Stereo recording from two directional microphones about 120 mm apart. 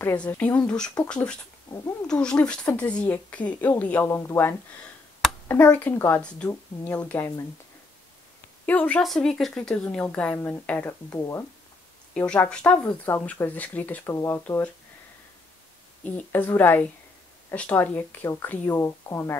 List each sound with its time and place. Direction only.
0.4 s speech: 10° left (ahead or behind)
8.6 s speech: 15° left (ahead or behind)
9.0 s speech: 5° left (ahead or behind)
11.1 s speech: 25° left (ahead or behind)
12.1 s speech: 10° left (ahead or behind)
16.0 s speech: 15° left (ahead or behind)